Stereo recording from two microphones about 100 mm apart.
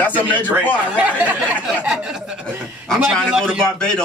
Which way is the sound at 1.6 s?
5° right (ahead or behind).